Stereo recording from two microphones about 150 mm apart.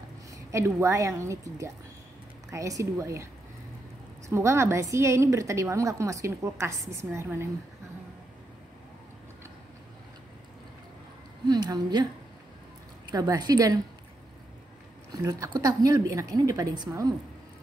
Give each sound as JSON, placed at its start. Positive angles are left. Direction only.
{"t": 0.3, "sound": "a woman's voice", "side_deg": -20}
{"t": 4.3, "sound": "a woman's voice", "side_deg": -20}
{"t": 11.4, "sound": "a woman's voice", "side_deg": -25}
{"t": 13.1, "sound": "a woman's voice", "side_deg": -25}
{"t": 15.2, "sound": "a woman's voice", "side_deg": -25}